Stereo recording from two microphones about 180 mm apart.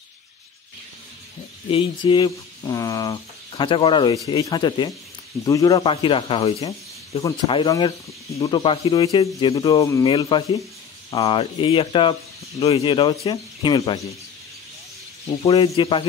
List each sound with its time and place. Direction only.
1.7 s speech: 30° left (ahead or behind)
15.4 s speech: 30° left (ahead or behind)